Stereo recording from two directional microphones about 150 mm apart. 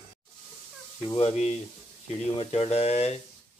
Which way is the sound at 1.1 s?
45° left (ahead or behind).